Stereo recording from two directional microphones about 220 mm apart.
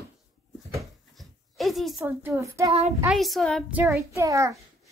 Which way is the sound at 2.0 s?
10° right (ahead or behind).